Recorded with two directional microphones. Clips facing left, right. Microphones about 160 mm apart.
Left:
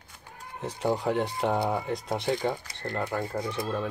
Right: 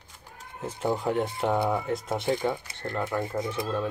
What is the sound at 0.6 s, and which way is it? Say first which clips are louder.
Speech: even; centre (ahead or behind).